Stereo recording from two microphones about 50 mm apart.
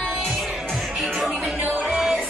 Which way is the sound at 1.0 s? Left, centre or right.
Centre.